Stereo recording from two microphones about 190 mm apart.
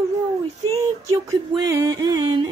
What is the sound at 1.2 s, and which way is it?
Music, 20° right (ahead or behind).